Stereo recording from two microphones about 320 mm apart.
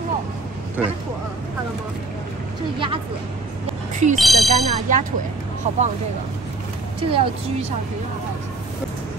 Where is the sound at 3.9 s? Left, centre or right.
Right.